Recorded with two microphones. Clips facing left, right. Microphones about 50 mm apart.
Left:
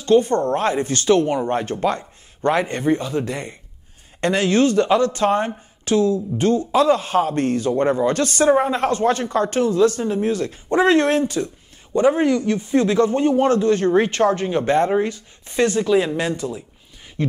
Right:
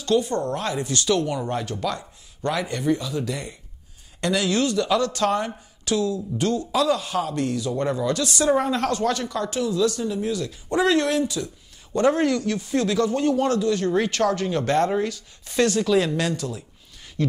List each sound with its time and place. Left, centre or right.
0.0 s speech: left
8.5 s speech: left
11.9 s a man's voice: centre